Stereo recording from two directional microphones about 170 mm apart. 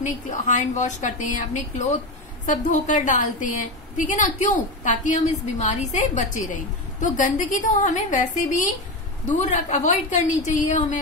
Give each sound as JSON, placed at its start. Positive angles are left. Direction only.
{"t": 0.0, "sound": "a woman's voice", "side_deg": 45}